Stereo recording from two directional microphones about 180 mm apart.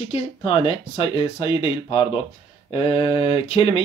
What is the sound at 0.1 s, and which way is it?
Speech, 30° left (ahead or behind).